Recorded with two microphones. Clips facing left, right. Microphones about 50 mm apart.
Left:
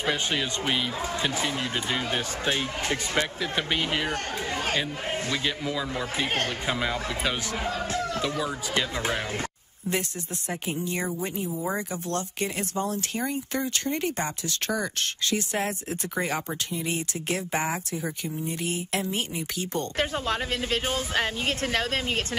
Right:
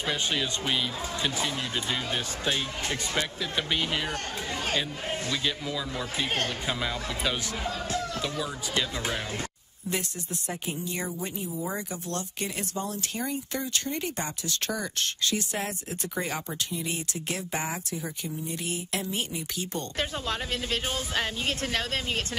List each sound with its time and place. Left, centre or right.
0.0 s speech: left
10.7 s speech: left